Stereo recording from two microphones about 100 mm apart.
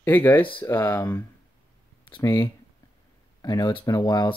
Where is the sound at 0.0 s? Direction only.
20° left (ahead or behind).